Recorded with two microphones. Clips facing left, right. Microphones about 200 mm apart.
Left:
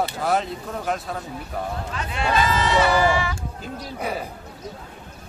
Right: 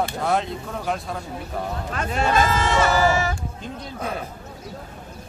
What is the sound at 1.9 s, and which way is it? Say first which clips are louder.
Speech: right 3 dB; 45° right (ahead or behind).